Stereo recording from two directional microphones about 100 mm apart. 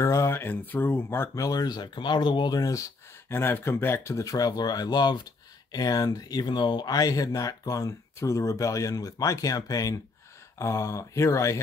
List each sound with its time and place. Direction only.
0.0 s speech: 30° left (ahead or behind)
1.4 s speech: 40° left (ahead or behind)
3.3 s speech: 25° left (ahead or behind)